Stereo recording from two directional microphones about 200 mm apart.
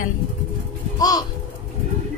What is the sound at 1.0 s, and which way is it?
Speech, 20° left (ahead or behind).